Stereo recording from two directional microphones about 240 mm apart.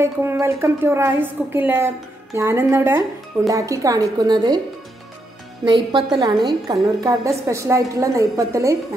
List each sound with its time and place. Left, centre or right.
0.0 s a woman's voice: centre
5.7 s a woman's voice: centre